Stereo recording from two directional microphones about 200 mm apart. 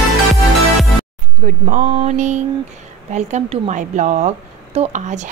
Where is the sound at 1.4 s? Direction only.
40° right (ahead or behind).